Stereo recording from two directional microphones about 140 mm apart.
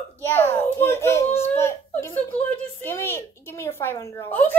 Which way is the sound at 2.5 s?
15° left (ahead or behind).